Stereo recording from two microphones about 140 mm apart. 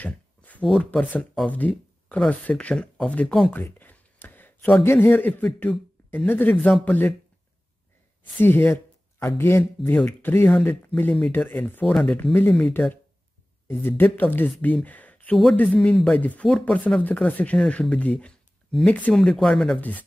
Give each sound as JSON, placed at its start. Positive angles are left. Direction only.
{"t": 0.0, "sound": "a man's voice", "side_deg": 10}
{"t": 8.2, "sound": "speech", "side_deg": 15}